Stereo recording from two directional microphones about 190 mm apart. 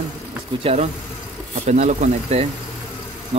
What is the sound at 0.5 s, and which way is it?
Speech, 25° right (ahead or behind).